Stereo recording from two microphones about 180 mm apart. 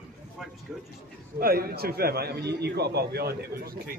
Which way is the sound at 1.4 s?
55° right (ahead or behind).